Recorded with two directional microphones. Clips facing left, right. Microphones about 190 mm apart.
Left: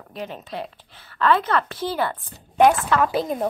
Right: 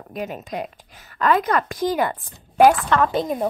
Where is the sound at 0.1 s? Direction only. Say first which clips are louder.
Right 3 dB; 10° right (ahead or behind).